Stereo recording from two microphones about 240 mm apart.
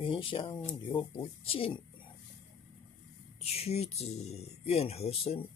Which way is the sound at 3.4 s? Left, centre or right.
Left.